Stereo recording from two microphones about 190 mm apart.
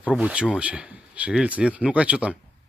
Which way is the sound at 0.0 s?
5° right (ahead or behind).